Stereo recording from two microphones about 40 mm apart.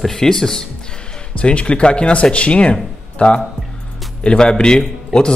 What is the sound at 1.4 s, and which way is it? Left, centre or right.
A man's voice, left.